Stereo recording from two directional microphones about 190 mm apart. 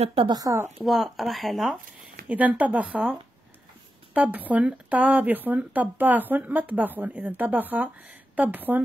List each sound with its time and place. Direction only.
0.0 s speech: 30° right (ahead or behind)
0.4 s speech: 15° right (ahead or behind)
0.7 s speech: centre (ahead or behind)